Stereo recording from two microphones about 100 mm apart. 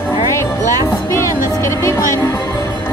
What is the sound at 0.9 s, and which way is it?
Music, 30° left (ahead or behind).